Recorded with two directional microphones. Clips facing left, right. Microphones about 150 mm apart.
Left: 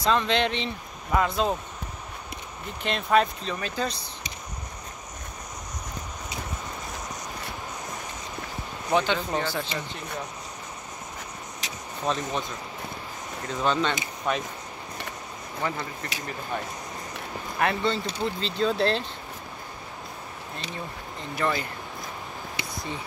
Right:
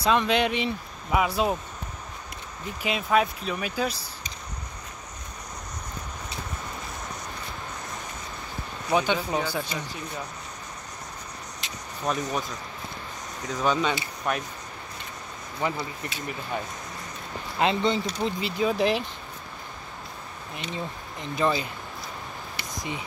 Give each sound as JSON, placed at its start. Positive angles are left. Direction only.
{"t": 0.0, "sound": "speech", "side_deg": -10}
{"t": 2.8, "sound": "speech", "side_deg": -5}
{"t": 8.9, "sound": "speech", "side_deg": -15}
{"t": 12.1, "sound": "speech", "side_deg": -5}
{"t": 13.7, "sound": "speech", "side_deg": -10}
{"t": 15.6, "sound": "speech", "side_deg": -15}
{"t": 17.6, "sound": "speech", "side_deg": -20}
{"t": 20.7, "sound": "speech", "side_deg": -20}
{"t": 22.8, "sound": "speech", "side_deg": -15}